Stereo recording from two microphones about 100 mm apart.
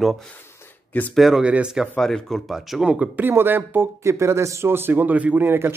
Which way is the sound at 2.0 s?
5° left (ahead or behind).